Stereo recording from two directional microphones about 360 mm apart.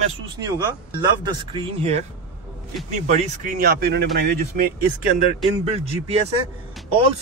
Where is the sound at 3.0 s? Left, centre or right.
Centre.